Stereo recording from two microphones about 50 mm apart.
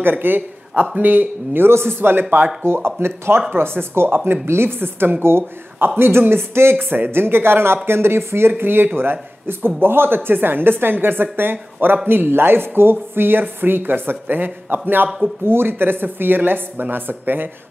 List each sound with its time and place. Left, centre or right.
0.0 s speech: right
1.7 s speech: right